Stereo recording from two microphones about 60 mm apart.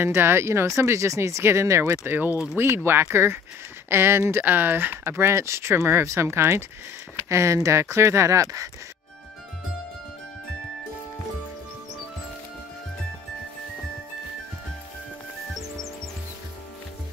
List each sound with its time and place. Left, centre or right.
0.0 s speech: right